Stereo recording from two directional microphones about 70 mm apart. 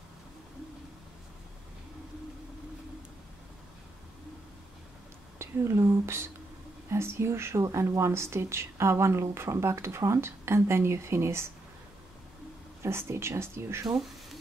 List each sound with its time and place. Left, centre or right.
5.4 s speech: right
12.8 s speech: right